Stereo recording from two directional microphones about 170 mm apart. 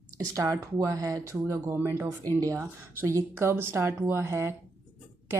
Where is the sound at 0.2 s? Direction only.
20° right (ahead or behind).